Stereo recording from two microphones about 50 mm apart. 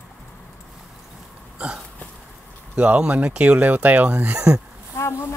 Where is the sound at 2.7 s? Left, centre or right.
Right.